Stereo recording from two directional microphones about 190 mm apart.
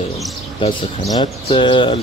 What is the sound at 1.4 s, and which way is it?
Speech, 25° left (ahead or behind).